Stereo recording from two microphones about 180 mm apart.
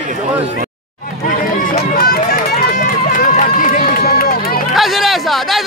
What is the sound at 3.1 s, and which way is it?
Run, 55° left (ahead or behind).